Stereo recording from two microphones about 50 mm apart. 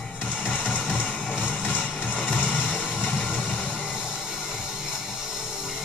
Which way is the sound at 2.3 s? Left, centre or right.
Left.